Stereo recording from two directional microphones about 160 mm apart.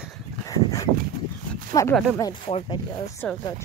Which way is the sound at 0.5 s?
20° left (ahead or behind).